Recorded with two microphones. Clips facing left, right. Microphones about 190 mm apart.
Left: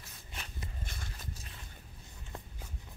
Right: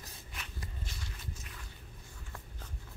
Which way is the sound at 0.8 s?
50° left (ahead or behind).